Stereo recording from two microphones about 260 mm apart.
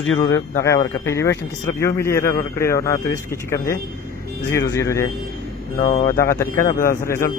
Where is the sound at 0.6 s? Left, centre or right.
Centre.